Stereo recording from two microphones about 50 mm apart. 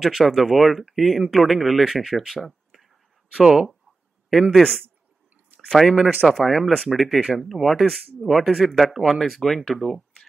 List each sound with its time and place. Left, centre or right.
0.0 s speech: centre
2.3 s a sound: centre
3.3 s speech: centre
4.3 s speech: centre
5.7 s speech: centre